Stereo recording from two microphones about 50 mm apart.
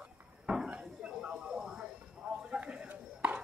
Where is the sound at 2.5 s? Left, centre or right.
Right.